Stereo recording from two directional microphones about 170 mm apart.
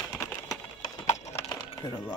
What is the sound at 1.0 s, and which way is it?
Clip-clop, 40° left (ahead or behind).